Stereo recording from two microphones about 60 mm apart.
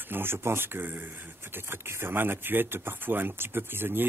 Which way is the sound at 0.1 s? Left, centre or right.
Right.